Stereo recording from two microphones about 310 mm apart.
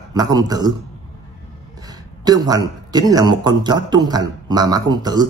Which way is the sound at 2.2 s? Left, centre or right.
Centre.